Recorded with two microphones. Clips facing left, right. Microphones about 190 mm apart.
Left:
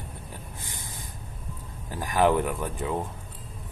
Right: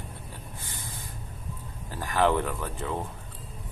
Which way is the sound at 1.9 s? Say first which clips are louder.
Left 2 dB; 15° left (ahead or behind).